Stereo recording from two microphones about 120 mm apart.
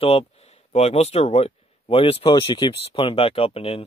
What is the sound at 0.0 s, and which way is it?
Speech, 55° left (ahead or behind).